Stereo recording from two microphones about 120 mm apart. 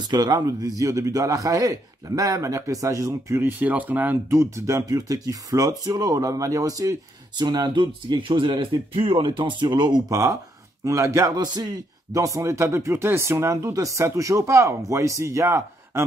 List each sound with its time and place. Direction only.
0.0 s a man's voice: 35° right (ahead or behind)
10.8 s a man's voice: 25° right (ahead or behind)